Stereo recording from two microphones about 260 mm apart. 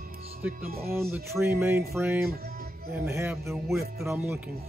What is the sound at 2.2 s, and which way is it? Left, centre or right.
Music, right.